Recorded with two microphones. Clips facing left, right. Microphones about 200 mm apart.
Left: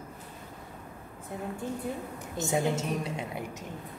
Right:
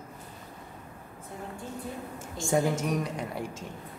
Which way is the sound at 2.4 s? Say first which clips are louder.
Right 2 dB; 25° left (ahead or behind).